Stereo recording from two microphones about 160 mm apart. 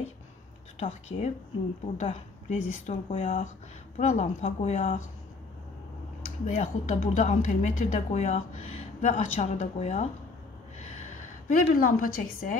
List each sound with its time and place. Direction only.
0.7 s a woman's voice: 40° left (ahead or behind)
6.4 s a woman's voice: 50° left (ahead or behind)
11.4 s a woman's voice: 60° left (ahead or behind)